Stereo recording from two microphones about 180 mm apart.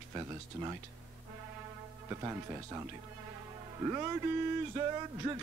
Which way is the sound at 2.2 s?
15° right (ahead or behind).